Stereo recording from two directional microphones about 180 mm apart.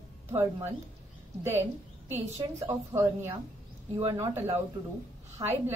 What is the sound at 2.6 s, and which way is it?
A woman's voice, 15° right (ahead or behind).